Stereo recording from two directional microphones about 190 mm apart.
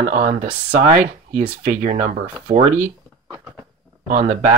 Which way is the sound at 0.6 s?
45° right (ahead or behind).